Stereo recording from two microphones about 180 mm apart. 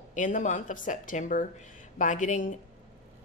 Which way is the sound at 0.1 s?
45° left (ahead or behind).